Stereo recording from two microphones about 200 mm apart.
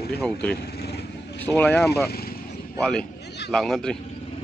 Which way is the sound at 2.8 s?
5° left (ahead or behind).